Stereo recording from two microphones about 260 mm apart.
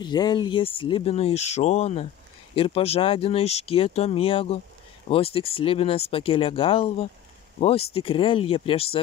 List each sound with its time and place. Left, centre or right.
0.0 s speech: centre